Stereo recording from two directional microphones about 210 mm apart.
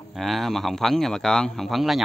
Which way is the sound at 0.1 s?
Centre (ahead or behind).